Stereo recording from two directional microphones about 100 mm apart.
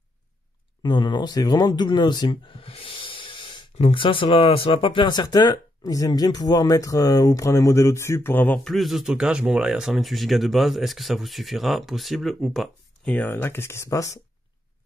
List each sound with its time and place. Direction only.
0.8 s speech: 50° left (ahead or behind)
3.7 s speech: 65° left (ahead or behind); by 8.5 s 20° left (ahead or behind)
8.6 s speech: centre (ahead or behind)
13.1 s speech: 20° left (ahead or behind)